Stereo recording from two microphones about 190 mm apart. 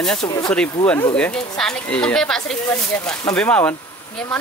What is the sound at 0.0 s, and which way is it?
Speech, 5° left (ahead or behind).